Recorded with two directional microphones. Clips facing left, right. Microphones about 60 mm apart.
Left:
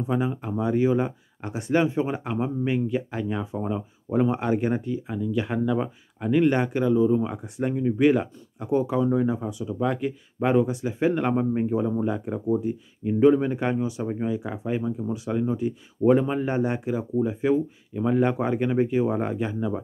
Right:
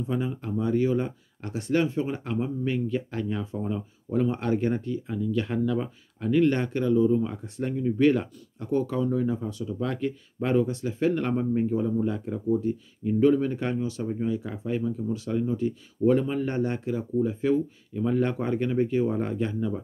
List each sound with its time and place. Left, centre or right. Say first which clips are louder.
0.0 s speech: left 3 dB; centre